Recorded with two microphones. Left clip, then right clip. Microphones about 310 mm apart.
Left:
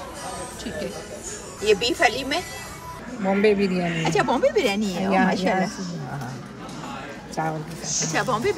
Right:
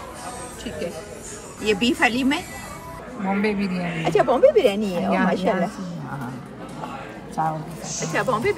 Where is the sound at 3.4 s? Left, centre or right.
Left.